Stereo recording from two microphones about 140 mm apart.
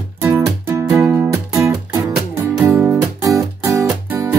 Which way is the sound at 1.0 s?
15° right (ahead or behind).